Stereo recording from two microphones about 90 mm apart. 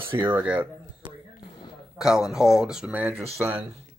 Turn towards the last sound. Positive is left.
turn(degrees=-20)  # may be behind; listen again after turning